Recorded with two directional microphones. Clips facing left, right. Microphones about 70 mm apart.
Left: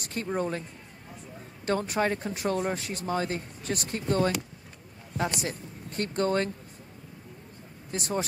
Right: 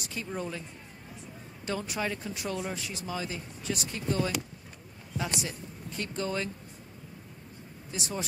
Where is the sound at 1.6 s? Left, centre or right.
Left.